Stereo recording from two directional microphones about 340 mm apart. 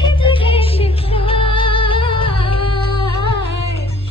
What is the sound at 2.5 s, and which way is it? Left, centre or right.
Music, left.